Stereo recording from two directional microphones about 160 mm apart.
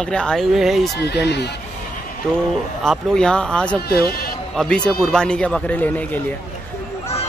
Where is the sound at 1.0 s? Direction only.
90° left.